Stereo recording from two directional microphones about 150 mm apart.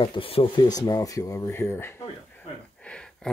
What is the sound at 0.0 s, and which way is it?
Speech, 35° left (ahead or behind).